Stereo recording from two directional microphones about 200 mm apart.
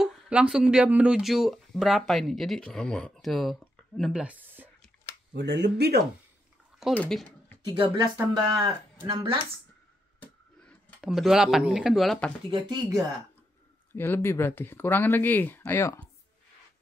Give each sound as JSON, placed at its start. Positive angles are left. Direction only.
{"t": 0.0, "sound": "speech", "side_deg": -5}
{"t": 5.3, "sound": "speech", "side_deg": -60}
{"t": 6.8, "sound": "speech", "side_deg": 5}
{"t": 7.7, "sound": "speech", "side_deg": -25}
{"t": 10.2, "sound": "a sound", "side_deg": 0}
{"t": 12.4, "sound": "speech", "side_deg": -20}
{"t": 13.9, "sound": "speech", "side_deg": 10}